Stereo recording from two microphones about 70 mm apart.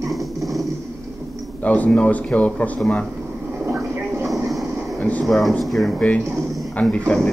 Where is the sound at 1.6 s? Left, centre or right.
Left.